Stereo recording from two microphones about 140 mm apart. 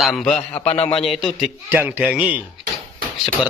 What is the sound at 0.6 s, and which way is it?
Speech, 45° left (ahead or behind).